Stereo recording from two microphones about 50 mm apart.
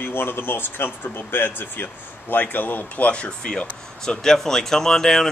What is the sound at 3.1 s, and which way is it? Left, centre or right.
Speech, centre.